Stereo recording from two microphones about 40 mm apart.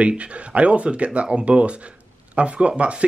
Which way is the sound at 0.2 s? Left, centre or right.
Right.